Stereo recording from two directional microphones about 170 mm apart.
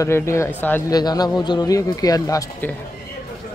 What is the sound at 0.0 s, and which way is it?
Speech, 15° left (ahead or behind).